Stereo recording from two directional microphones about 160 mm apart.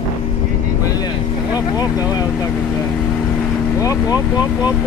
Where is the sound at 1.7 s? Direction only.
25° left (ahead or behind).